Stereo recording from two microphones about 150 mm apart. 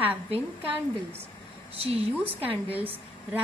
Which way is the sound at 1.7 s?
40° right (ahead or behind).